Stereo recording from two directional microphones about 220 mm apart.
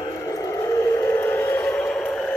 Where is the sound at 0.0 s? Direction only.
15° left (ahead or behind).